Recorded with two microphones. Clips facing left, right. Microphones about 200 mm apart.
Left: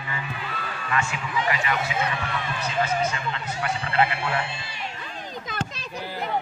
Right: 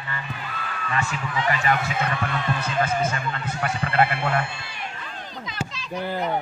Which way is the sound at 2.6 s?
50° right (ahead or behind).